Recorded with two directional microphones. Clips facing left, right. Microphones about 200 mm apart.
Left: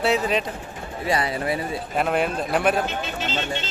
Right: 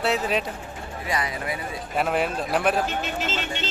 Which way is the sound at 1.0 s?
30° left (ahead or behind).